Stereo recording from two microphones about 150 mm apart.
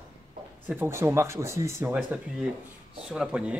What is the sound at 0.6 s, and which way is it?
Speech, 15° right (ahead or behind).